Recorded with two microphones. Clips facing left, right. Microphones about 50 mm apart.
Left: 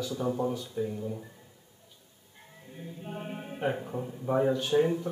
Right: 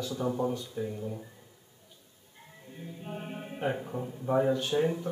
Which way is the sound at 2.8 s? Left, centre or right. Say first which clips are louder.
Left 1 dB; centre.